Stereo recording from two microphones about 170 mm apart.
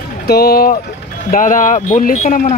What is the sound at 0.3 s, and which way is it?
Speech, 65° left (ahead or behind).